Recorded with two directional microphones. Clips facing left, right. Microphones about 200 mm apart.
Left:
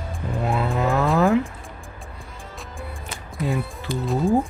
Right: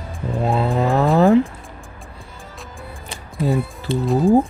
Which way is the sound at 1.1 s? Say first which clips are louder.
Right 6 dB; 35° right (ahead or behind).